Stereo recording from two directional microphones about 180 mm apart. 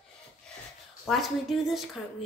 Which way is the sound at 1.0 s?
Centre (ahead or behind).